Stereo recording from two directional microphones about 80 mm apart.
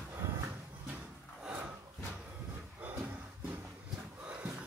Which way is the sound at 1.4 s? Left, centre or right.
Centre.